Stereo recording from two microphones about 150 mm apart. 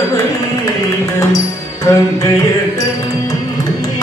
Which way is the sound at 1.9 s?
20° left (ahead or behind).